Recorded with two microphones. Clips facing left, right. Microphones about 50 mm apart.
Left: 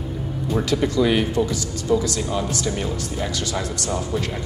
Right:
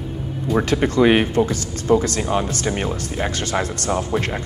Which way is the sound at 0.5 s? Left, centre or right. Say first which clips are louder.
Right 3 dB; right.